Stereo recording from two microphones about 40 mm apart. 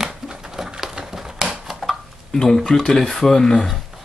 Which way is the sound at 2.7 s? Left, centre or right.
Centre.